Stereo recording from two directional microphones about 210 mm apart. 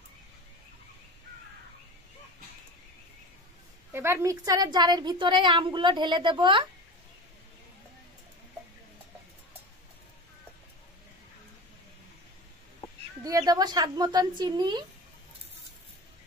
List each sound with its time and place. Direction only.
3.9 s a woman's voice: 10° right (ahead or behind)
13.2 s a woman's voice: 15° right (ahead or behind)